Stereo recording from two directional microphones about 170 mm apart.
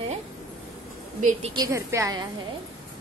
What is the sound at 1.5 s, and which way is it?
Speech, 20° right (ahead or behind).